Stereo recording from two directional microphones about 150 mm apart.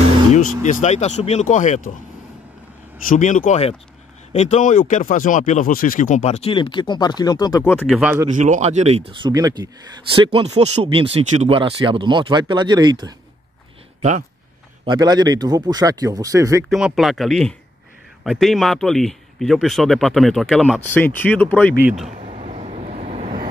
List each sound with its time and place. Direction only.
0.6 s speech: 55° left (ahead or behind)
3.1 s speech: 60° left (ahead or behind); by 7.6 s 25° left (ahead or behind)
7.6 s speech: 10° left (ahead or behind)
7.9 s speech: 5° right (ahead or behind)
8.3 s speech: 55° right (ahead or behind); by 13.1 s 30° right (ahead or behind)
14.9 s speech: 25° right (ahead or behind)
16.6 s speech: centre (ahead or behind)
20.9 s speech: 10° left (ahead or behind)
22.2 s vehicle: 50° right (ahead or behind)